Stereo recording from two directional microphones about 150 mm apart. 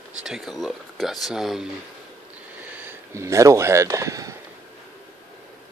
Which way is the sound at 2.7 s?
15° right (ahead or behind).